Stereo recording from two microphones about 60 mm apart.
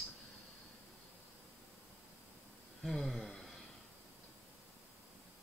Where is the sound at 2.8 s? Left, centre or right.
Centre.